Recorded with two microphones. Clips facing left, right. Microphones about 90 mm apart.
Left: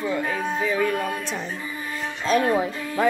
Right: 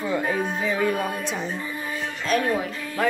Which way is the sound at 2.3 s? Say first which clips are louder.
Left 3 dB; 30° left (ahead or behind).